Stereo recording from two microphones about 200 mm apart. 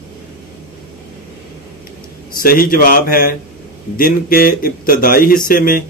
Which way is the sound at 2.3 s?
45° left (ahead or behind).